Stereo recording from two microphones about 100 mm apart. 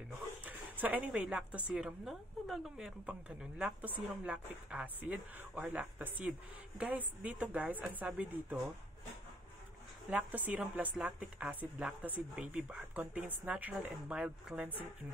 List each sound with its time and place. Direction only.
0.5 s a woman's voice: 15° right (ahead or behind)
10.0 s speech: 15° right (ahead or behind)